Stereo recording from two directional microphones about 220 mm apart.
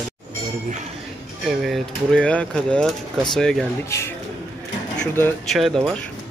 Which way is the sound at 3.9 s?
10° left (ahead or behind).